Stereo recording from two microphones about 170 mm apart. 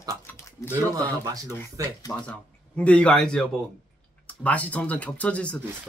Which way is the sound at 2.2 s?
5° left (ahead or behind).